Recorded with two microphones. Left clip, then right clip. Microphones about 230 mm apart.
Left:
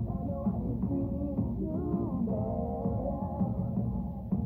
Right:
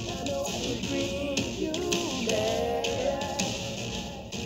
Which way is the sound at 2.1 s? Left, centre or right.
Right.